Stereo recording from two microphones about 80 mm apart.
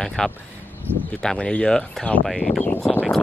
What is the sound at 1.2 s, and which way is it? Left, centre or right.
Speech, centre.